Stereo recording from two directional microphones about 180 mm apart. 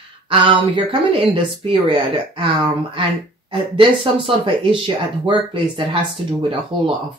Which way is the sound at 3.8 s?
30° right (ahead or behind).